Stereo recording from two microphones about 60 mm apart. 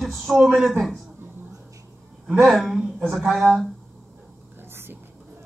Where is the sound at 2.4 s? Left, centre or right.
Centre.